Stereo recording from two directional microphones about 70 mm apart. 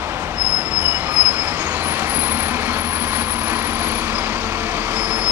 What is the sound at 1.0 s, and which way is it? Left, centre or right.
Vehicle, right.